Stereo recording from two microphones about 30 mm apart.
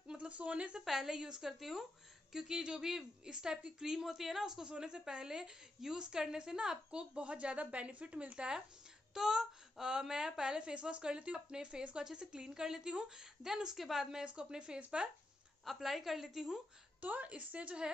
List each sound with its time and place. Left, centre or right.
0.2 s speech: right
0.8 s a woman's voice: centre
1.1 s speech: right
1.6 s a woman's voice: centre
2.3 s a woman's voice: centre
4.6 s speech: right
7.0 s a woman's voice: right
9.1 s speech: centre
12.0 s speech: right
14.2 s speech: right
15.6 s a woman's voice: centre
17.0 s a woman's voice: right
17.4 s a woman's voice: right